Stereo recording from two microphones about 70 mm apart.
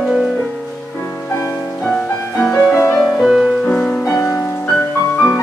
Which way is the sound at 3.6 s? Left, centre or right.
Centre.